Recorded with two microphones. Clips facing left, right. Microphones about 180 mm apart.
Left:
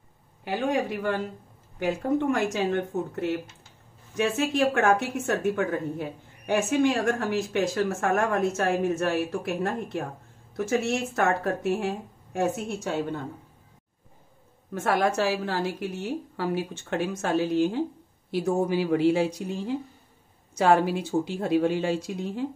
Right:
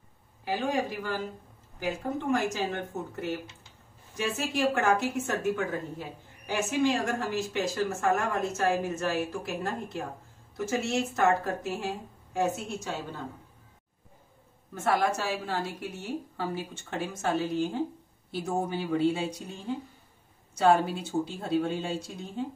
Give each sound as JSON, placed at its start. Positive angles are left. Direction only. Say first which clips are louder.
{"t": 0.5, "sound": "a woman's voice", "louder": "left 3 dB", "side_deg": 60}
{"t": 14.7, "sound": "a woman's voice", "louder": "left 2 dB", "side_deg": 80}
{"t": 17.2, "sound": "speech", "louder": "left 4 dB", "side_deg": 75}
{"t": 18.3, "sound": "a woman's voice", "louder": "left 6 dB", "side_deg": 90}